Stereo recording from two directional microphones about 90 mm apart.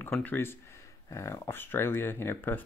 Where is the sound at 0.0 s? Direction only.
20° left (ahead or behind).